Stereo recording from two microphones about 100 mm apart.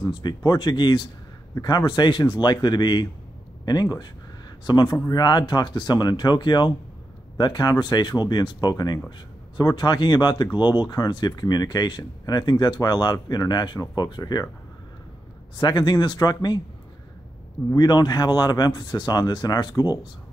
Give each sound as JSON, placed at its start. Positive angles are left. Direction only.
{"t": 0.1, "sound": "speech", "side_deg": 45}
{"t": 15.5, "sound": "speech", "side_deg": 50}
{"t": 17.7, "sound": "speech", "side_deg": 45}